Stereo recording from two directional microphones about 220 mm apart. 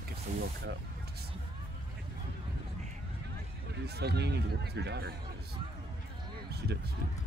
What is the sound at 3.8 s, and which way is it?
Speech, 50° right (ahead or behind).